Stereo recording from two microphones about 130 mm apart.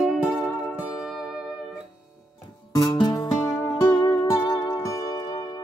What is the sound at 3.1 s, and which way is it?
Music, 25° left (ahead or behind).